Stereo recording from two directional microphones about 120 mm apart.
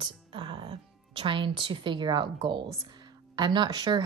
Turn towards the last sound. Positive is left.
turn(degrees=-35)  # may be behind; listen again after turning